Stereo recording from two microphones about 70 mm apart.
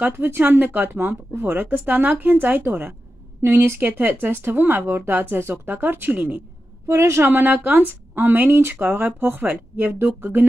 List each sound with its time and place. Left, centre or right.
0.0 s speech: right
6.9 s speech: right